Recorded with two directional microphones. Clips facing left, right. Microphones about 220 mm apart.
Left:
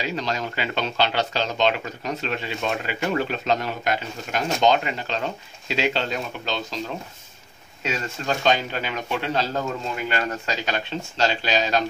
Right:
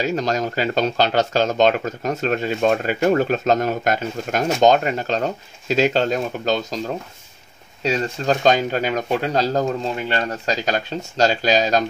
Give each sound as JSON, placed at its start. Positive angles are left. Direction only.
{"t": 0.0, "sound": "speech", "side_deg": -45}
{"t": 7.8, "sound": "speech", "side_deg": -35}